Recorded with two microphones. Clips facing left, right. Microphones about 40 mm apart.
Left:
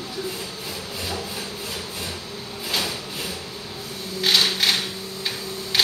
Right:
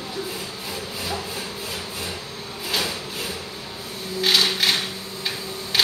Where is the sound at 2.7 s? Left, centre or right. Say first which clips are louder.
Right 1 dB; centre.